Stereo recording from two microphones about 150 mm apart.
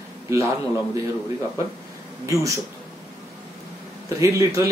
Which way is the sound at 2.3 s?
20° right (ahead or behind).